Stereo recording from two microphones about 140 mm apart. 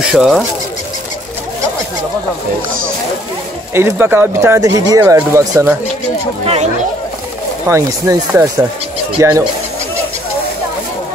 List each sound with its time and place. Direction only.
0.0 s speech: 5° right (ahead or behind)
3.7 s speech: 15° right (ahead or behind)
6.4 s speech: 50° right (ahead or behind)
7.6 s speech: 20° right (ahead or behind)